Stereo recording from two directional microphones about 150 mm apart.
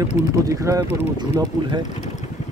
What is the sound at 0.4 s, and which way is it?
Speech, 25° right (ahead or behind).